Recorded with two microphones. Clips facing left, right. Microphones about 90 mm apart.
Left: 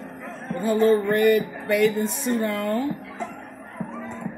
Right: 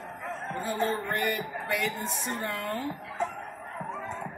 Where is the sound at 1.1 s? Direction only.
70° left (ahead or behind).